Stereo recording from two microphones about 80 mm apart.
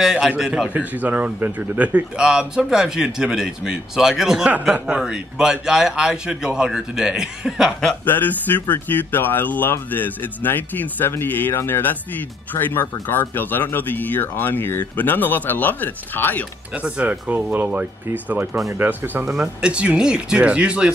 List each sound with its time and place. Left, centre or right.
0.0 s a man's voice: centre
0.7 s speech: centre
7.9 s speech: left
16.7 s speech: centre
19.2 s speech: centre